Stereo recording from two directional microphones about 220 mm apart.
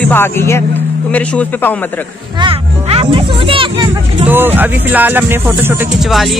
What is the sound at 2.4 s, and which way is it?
Speech, 25° right (ahead or behind).